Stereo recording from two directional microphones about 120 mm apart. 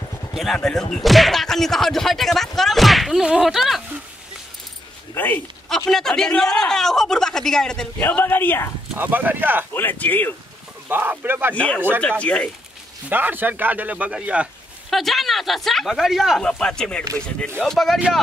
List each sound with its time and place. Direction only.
0.3 s speech: centre (ahead or behind)
5.1 s speech: 15° left (ahead or behind)
5.9 s speech: 5° left (ahead or behind)
8.9 s a man's voice: 15° right (ahead or behind)
9.8 s speech: 15° left (ahead or behind)
10.9 s a man's voice: 15° right (ahead or behind)
11.5 s speech: 10° left (ahead or behind)
13.1 s a man's voice: 15° right (ahead or behind)
14.9 s speech: centre (ahead or behind)